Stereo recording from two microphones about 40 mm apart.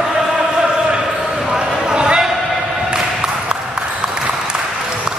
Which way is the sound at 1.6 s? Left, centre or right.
Right.